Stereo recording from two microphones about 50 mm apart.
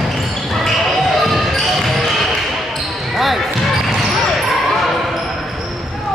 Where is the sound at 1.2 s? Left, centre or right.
Centre.